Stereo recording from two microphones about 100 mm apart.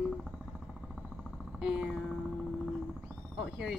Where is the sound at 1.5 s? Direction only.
10° right (ahead or behind).